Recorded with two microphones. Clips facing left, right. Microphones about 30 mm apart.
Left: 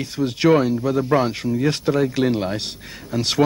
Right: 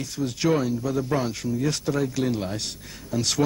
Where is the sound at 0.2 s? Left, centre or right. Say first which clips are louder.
Left 7 dB; left.